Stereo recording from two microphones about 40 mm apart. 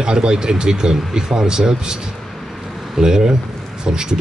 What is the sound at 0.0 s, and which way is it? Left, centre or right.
Speech, centre.